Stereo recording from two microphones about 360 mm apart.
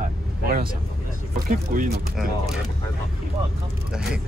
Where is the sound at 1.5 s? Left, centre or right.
Right.